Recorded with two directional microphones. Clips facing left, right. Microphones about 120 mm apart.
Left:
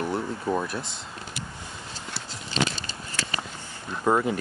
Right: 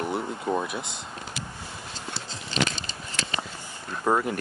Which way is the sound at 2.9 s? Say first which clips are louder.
Even; 20° right (ahead or behind).